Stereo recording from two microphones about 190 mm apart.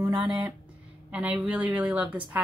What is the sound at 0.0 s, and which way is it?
Speech, 25° right (ahead or behind).